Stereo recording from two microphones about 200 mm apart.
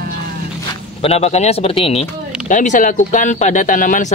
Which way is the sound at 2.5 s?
40° left (ahead or behind).